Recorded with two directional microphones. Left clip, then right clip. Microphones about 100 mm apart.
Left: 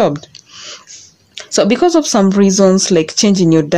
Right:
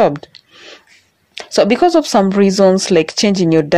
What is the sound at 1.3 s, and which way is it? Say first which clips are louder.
Speech: right 1 dB; 30° right (ahead or behind).